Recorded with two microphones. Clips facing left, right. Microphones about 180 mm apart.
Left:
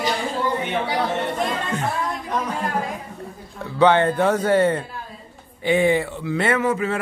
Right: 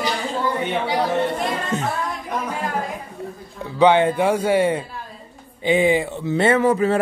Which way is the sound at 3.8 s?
15° right (ahead or behind).